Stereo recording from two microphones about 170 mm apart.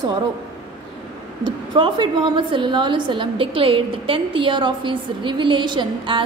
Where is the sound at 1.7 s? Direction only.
30° right (ahead or behind).